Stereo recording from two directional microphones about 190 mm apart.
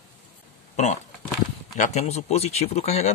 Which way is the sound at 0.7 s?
40° left (ahead or behind).